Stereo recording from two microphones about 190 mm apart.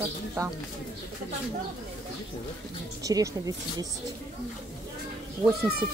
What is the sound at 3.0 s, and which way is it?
Speech, 20° right (ahead or behind).